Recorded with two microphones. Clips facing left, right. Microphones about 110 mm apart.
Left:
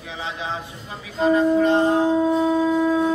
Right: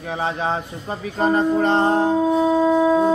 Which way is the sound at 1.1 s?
50° right (ahead or behind).